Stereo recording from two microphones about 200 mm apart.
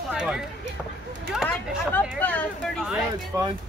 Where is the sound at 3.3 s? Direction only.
15° right (ahead or behind).